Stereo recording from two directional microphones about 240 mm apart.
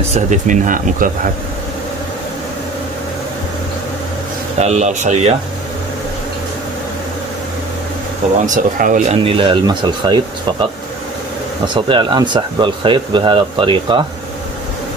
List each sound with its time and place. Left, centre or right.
0.1 s speech: right
4.6 s speech: right
8.5 s speech: right; by 10.1 s centre
11.6 s speech: centre